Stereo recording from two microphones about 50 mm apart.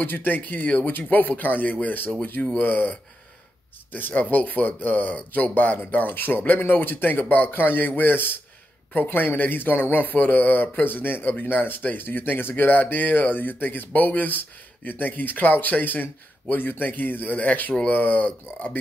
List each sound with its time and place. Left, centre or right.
0.0 s a man's voice: left